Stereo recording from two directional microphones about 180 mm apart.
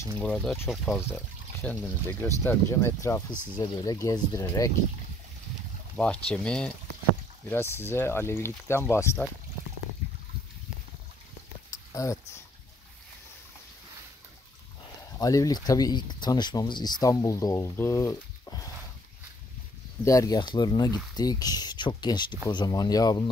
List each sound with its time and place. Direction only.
0.2 s speech: centre (ahead or behind); by 4.7 s 20° left (ahead or behind)
5.9 s speech: 5° left (ahead or behind)
11.9 s speech: 20° left (ahead or behind)
15.1 s speech: 20° left (ahead or behind)
20.1 s speech: 20° left (ahead or behind)